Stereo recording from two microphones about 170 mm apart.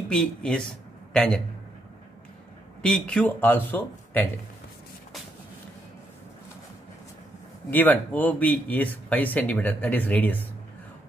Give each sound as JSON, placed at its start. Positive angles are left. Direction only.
{"t": 0.1, "sound": "a man's voice", "side_deg": 5}
{"t": 2.8, "sound": "speech", "side_deg": 5}
{"t": 7.7, "sound": "speech", "side_deg": 10}